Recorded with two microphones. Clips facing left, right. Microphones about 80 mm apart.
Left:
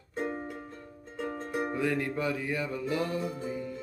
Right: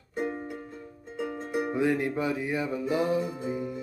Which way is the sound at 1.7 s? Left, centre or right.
Right.